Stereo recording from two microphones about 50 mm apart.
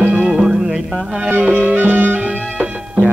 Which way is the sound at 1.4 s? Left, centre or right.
Right.